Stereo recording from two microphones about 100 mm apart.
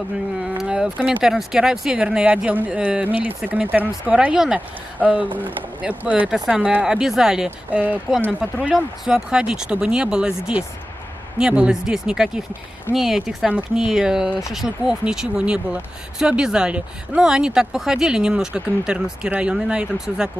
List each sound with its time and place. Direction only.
0.4 s speech: 5° right (ahead or behind)